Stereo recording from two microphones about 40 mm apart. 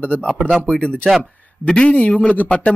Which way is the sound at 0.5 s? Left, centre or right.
Centre.